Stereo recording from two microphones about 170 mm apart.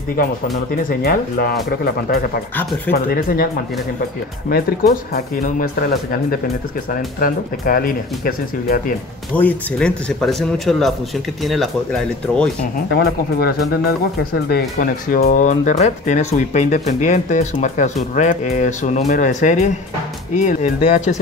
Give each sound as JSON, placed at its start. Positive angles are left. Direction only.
{"t": 0.8, "sound": "speech", "side_deg": 65}
{"t": 2.9, "sound": "speech", "side_deg": 55}
{"t": 5.1, "sound": "speech", "side_deg": 60}
{"t": 9.3, "sound": "speech", "side_deg": 10}
{"t": 12.9, "sound": "speech", "side_deg": 70}
{"t": 14.5, "sound": "speech", "side_deg": 60}